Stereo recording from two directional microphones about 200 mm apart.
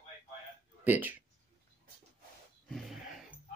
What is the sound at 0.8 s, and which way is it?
Speech, 10° right (ahead or behind).